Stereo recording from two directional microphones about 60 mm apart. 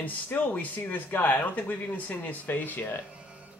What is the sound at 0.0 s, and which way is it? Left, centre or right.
Speech, left.